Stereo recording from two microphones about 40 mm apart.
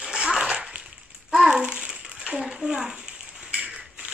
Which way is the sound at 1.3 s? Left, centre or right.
Centre.